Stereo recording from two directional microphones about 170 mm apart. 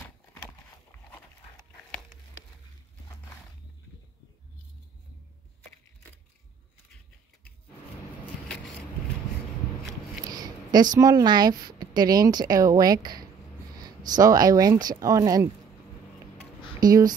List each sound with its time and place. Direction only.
10.3 s a sound: 25° right (ahead or behind)
11.0 s speech: 20° right (ahead or behind)
16.8 s speech: 20° right (ahead or behind)